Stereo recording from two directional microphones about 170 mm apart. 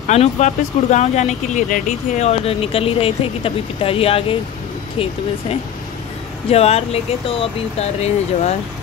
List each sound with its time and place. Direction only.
0.1 s speech: 40° left (ahead or behind)
6.5 s speech: 35° left (ahead or behind)